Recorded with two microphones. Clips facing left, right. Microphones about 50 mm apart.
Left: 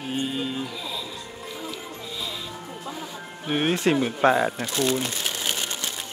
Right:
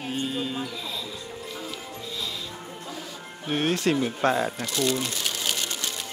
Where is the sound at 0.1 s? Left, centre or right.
Centre.